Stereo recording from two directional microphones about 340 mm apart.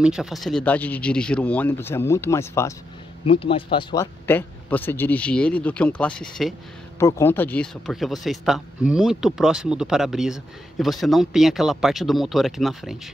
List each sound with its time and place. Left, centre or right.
0.0 s speech: centre